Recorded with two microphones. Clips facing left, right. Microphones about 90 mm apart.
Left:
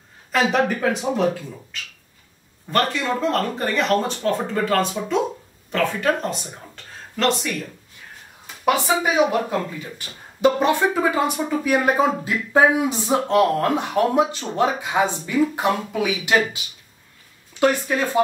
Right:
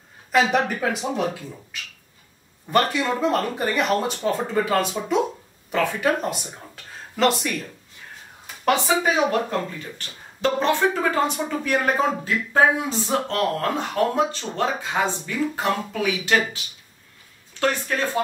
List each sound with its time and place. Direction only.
0.3 s speech: centre (ahead or behind)
2.7 s speech: 5° right (ahead or behind)
8.6 s speech: 10° left (ahead or behind)
17.6 s speech: 15° left (ahead or behind)